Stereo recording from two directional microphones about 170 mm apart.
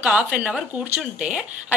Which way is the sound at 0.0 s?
5° right (ahead or behind).